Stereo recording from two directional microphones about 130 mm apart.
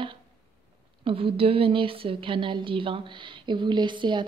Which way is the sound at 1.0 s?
45° right (ahead or behind).